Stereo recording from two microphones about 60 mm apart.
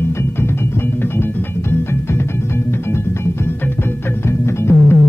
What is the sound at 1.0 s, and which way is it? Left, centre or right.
Music, left.